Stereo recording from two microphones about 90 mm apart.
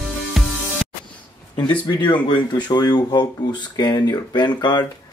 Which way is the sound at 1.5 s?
60° left (ahead or behind).